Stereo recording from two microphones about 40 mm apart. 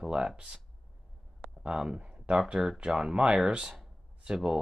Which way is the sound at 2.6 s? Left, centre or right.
Centre.